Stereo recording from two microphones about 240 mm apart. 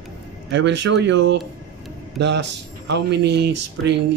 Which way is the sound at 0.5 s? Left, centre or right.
Right.